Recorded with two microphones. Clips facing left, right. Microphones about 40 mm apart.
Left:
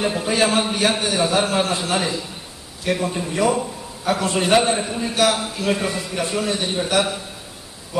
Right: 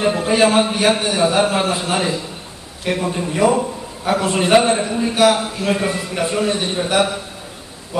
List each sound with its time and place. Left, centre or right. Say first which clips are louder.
0.0 s a man's voice: right 4 dB; centre